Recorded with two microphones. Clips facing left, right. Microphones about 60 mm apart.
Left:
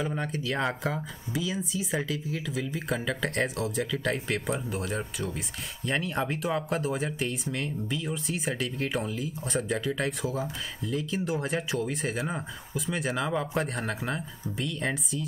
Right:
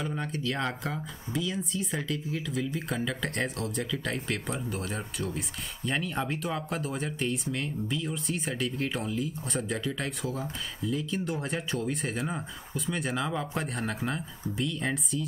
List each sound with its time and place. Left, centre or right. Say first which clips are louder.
0.0 s speech: left 1 dB; centre